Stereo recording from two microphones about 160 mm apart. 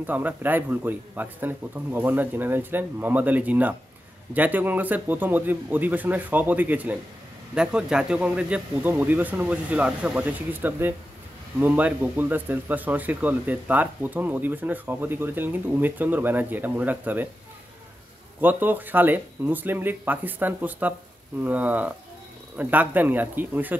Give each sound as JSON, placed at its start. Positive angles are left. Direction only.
{"t": 0.0, "sound": "speech", "side_deg": -10}
{"t": 18.4, "sound": "speech", "side_deg": -10}